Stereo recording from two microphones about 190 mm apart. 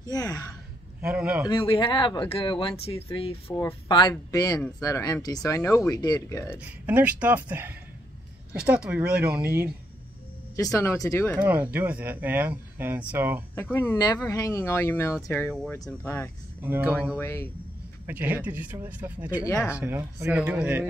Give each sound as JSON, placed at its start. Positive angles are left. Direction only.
{"t": 0.0, "sound": "speech", "side_deg": 20}
{"t": 1.0, "sound": "speech", "side_deg": -5}
{"t": 1.5, "sound": "speech", "side_deg": 25}
{"t": 6.5, "sound": "speech", "side_deg": -10}
{"t": 10.5, "sound": "speech", "side_deg": 15}
{"t": 11.3, "sound": "speech", "side_deg": -10}
{"t": 13.6, "sound": "speech", "side_deg": 10}
{"t": 16.6, "sound": "speech", "side_deg": -10}
{"t": 17.2, "sound": "speech", "side_deg": 15}
{"t": 18.0, "sound": "speech", "side_deg": -10}